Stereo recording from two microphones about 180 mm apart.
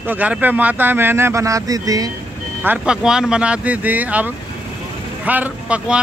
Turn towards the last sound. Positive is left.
turn(degrees=-5)  # may be behind; listen again after turning